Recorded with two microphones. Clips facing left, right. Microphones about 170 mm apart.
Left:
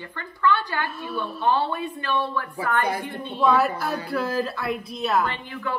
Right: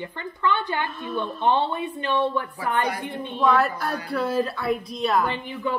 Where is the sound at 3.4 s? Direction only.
5° left (ahead or behind).